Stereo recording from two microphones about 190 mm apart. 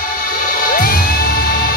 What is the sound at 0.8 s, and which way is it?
Music, 50° left (ahead or behind).